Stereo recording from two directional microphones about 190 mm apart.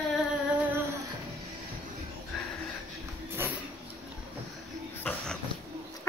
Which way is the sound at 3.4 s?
10° right (ahead or behind).